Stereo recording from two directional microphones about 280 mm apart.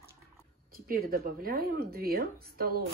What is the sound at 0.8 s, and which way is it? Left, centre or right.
A woman's voice, right.